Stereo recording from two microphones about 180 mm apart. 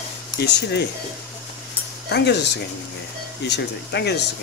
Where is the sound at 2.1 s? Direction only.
70° left (ahead or behind).